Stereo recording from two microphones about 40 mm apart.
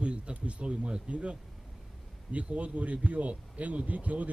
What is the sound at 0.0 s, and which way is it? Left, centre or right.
Speech, right.